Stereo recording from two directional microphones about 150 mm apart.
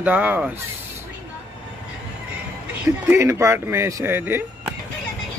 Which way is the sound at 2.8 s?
15° right (ahead or behind).